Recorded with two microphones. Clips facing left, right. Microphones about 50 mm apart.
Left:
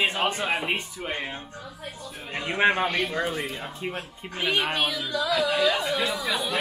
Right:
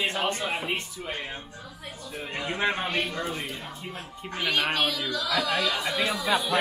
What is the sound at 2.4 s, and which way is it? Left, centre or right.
Speech, left.